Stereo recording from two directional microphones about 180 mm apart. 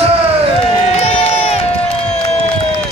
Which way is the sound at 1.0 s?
35° left (ahead or behind).